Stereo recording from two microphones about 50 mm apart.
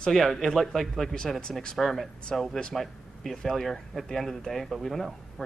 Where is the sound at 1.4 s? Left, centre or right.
Centre.